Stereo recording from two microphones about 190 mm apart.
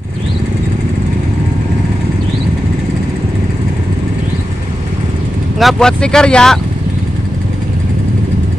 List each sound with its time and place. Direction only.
5.6 s speech: centre (ahead or behind)